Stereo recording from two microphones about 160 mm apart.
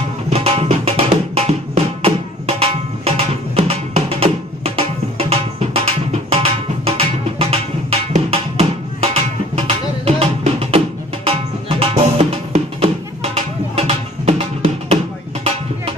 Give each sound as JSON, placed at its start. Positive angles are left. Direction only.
{"t": 0.3, "sound": "music", "side_deg": -40}
{"t": 11.8, "sound": "music", "side_deg": -40}